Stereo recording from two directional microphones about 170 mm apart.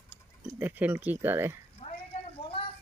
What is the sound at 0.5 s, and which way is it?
Speech, 10° right (ahead or behind).